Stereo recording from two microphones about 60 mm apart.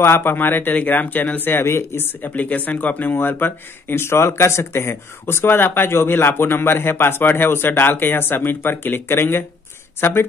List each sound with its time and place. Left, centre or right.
0.0 s speech: left
2.2 s speech: left